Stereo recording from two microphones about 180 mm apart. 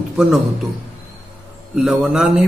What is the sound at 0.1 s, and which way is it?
Speech, 5° right (ahead or behind).